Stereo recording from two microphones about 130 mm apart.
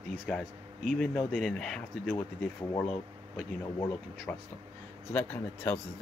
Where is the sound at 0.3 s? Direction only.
5° left (ahead or behind).